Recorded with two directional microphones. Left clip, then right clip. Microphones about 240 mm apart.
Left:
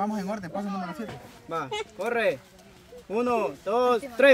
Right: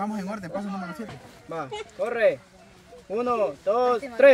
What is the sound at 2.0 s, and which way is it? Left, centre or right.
Speech, left.